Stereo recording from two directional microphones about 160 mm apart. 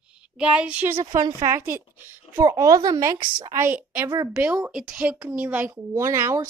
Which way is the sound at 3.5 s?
10° right (ahead or behind).